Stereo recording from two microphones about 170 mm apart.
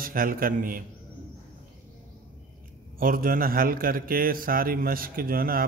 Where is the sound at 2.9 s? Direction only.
55° right (ahead or behind).